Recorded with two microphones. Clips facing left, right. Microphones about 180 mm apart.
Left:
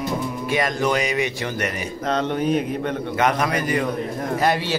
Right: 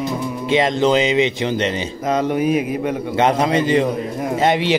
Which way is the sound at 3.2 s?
25° right (ahead or behind).